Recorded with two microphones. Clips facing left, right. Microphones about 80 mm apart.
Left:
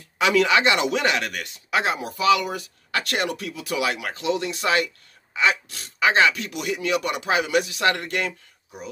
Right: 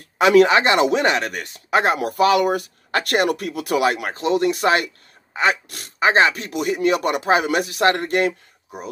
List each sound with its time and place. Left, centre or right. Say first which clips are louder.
0.2 s speech: right 6 dB; right
2.0 s speech: right 4 dB; right